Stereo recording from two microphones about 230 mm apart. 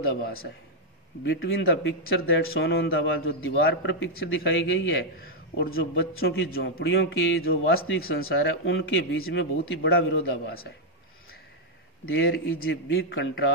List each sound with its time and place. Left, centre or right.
0.1 s a man's voice: left
1.2 s a man's voice: left
8.2 s a man's voice: left
12.2 s a man's voice: left